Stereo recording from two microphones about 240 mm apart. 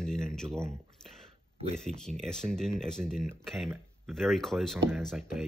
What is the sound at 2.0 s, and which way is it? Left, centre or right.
Speech, centre.